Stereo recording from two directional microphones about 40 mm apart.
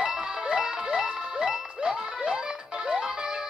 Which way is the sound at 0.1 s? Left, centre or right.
Centre.